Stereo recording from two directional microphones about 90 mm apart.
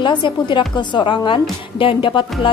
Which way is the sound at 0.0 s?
60° left (ahead or behind).